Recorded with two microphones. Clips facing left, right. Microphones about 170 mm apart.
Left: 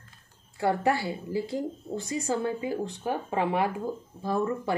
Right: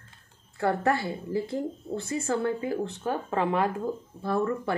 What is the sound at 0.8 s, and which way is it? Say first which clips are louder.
A woman's voice: even; 10° left (ahead or behind).